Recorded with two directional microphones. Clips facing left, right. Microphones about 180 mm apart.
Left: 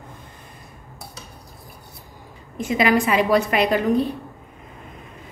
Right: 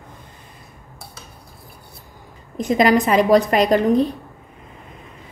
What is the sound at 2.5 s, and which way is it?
A woman's voice, 40° right (ahead or behind).